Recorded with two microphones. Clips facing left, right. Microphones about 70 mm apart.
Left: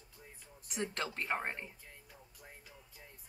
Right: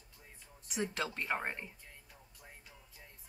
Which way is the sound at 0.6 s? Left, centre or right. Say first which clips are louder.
Right 2 dB; centre.